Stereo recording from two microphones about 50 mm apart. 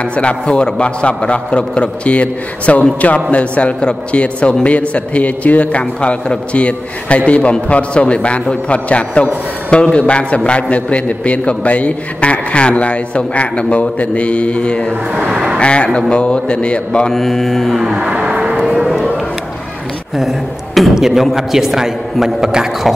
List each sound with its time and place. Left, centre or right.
0.0 s a man's voice: left
17.1 s mantra: centre
17.9 s a sound: right
20.2 s a man's voice: centre